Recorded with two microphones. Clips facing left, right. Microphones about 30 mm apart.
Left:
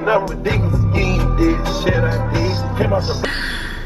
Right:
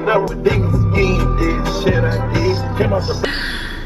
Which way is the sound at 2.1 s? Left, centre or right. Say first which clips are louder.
Right 2 dB; centre.